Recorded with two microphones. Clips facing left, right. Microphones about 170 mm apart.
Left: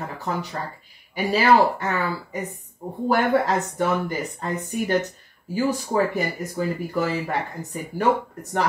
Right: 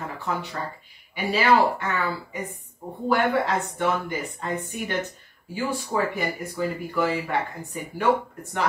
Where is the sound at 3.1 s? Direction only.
40° left (ahead or behind).